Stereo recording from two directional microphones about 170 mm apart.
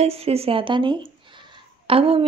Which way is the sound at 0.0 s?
35° right (ahead or behind).